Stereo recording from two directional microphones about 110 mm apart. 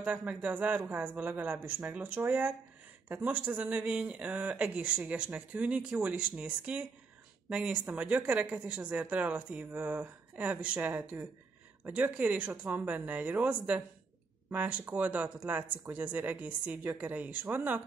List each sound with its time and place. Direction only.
0.0 s speech: 15° right (ahead or behind)